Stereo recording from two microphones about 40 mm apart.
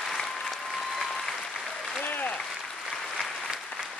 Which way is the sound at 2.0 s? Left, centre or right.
Left.